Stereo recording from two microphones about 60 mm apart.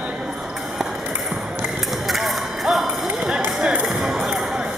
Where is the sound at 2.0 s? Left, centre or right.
Centre.